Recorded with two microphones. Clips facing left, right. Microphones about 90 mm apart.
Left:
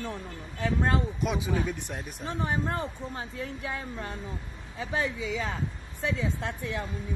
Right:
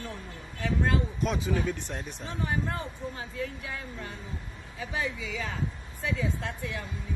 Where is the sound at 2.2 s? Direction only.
35° left (ahead or behind).